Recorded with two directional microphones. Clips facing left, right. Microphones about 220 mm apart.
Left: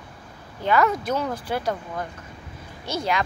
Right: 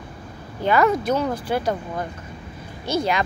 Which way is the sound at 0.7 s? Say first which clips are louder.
Right 3 dB; 5° right (ahead or behind).